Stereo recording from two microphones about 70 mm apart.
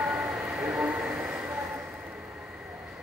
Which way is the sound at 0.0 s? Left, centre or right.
Centre.